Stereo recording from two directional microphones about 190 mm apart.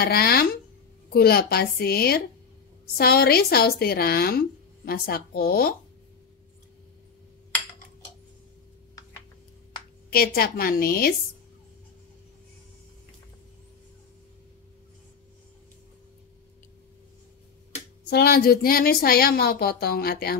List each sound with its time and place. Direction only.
0.0 s a woman's voice: 55° left (ahead or behind)
10.0 s a woman's voice: 55° left (ahead or behind)
18.1 s a woman's voice: 55° left (ahead or behind)